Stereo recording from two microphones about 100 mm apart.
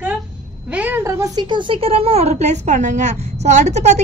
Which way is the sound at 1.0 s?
30° right (ahead or behind).